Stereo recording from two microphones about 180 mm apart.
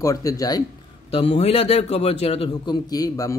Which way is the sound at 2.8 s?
20° left (ahead or behind).